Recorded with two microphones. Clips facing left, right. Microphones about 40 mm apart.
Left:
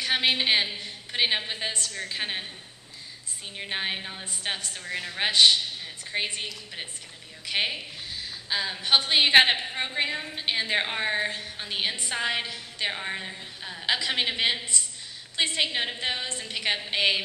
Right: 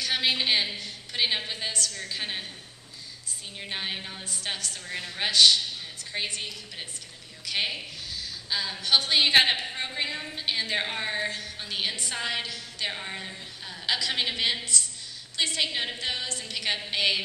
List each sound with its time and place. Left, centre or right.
0.0 s a woman's voice: left
3.5 s a woman's voice: left